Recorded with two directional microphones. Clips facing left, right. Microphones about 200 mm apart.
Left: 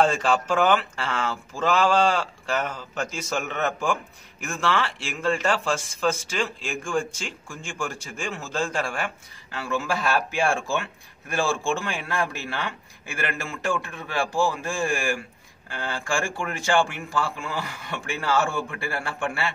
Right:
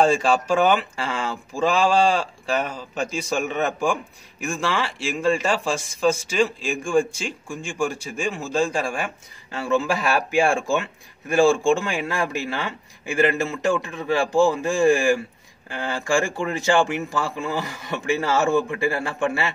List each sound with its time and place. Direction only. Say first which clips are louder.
0.0 s a man's voice: right 3 dB; 10° right (ahead or behind)
16.3 s a man's voice: right 3 dB; 20° right (ahead or behind)